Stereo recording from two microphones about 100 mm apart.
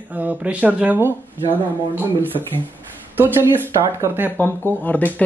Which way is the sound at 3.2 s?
20° right (ahead or behind).